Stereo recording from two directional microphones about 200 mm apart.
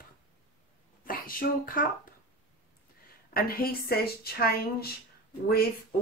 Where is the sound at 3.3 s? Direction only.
50° left (ahead or behind).